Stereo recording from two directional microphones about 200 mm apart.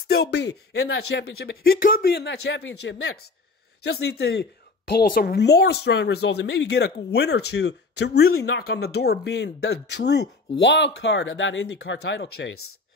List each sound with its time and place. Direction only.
0.1 s speech: 55° left (ahead or behind)
2.2 s speech: 60° left (ahead or behind); by 12.7 s 80° left